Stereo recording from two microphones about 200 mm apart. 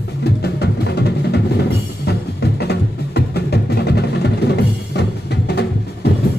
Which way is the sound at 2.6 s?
55° left (ahead or behind).